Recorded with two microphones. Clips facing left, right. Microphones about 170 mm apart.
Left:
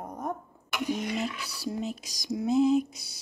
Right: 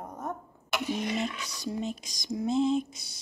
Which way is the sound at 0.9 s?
Centre (ahead or behind).